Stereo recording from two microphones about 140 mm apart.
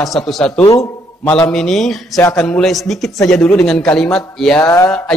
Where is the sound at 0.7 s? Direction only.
25° left (ahead or behind).